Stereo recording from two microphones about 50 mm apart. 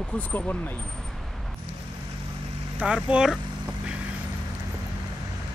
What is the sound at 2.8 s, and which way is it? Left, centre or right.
Speech, centre.